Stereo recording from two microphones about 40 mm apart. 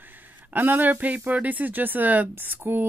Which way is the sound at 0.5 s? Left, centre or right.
Right.